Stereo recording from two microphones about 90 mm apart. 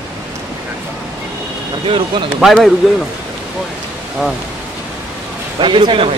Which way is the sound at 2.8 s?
Centre (ahead or behind).